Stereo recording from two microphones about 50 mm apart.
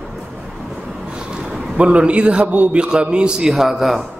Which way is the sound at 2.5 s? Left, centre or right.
Right.